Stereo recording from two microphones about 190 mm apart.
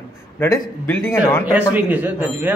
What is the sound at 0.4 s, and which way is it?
A man's voice, 10° left (ahead or behind).